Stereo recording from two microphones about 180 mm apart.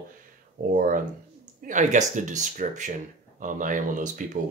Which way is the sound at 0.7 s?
50° right (ahead or behind).